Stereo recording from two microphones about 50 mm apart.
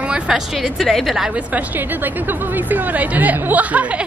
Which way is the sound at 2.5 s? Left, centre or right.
Right.